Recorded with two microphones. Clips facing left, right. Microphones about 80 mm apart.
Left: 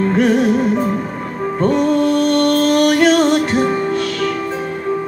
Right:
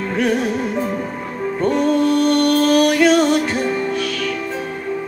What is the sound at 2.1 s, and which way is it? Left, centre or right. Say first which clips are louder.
Music: left 1 dB; left.